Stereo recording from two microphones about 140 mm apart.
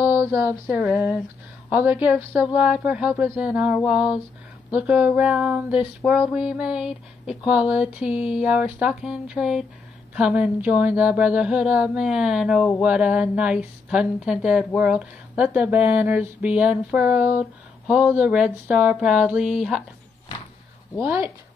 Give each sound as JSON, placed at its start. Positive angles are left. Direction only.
{"t": 0.0, "sound": "a sound", "side_deg": -15}
{"t": 1.7, "sound": "speech", "side_deg": -10}
{"t": 21.0, "sound": "speech", "side_deg": -15}